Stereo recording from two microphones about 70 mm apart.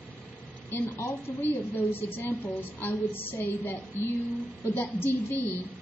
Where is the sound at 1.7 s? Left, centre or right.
Left.